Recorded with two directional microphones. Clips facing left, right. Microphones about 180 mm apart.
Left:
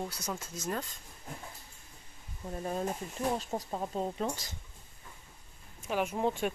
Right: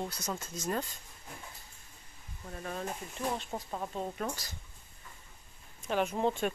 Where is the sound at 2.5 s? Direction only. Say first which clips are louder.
Left 4 dB; 30° left (ahead or behind).